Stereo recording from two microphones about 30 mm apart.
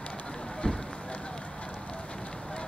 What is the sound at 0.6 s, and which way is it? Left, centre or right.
Speech, left.